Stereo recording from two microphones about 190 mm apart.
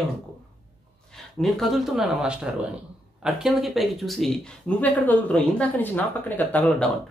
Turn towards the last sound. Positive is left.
turn(degrees=10)  # may be behind; listen again after turning